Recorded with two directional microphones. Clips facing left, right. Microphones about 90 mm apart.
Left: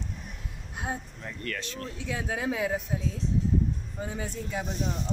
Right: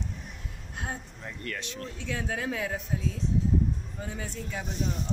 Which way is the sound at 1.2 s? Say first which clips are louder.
Left 1 dB; 10° right (ahead or behind).